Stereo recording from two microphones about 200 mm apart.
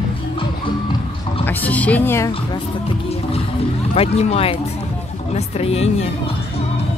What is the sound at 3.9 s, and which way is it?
Speech, 30° left (ahead or behind).